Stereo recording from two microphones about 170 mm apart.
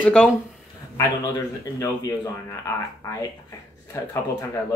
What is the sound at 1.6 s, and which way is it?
Speech, 20° left (ahead or behind).